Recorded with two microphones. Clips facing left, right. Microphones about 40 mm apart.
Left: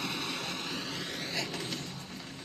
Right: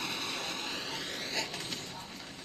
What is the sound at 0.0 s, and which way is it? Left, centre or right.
Vehicle, centre.